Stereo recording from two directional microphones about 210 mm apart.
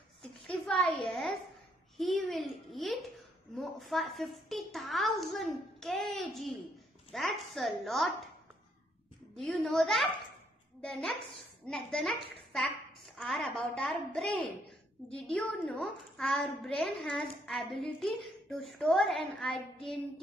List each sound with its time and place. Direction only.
0.2 s a sound: 5° left (ahead or behind)
3.5 s a woman's voice: centre (ahead or behind)
9.3 s a woman's voice: centre (ahead or behind)
19.5 s child singing: 25° left (ahead or behind)